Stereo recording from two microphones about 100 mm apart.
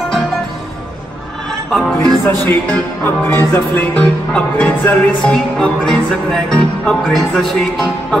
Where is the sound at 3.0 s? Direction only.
20° left (ahead or behind).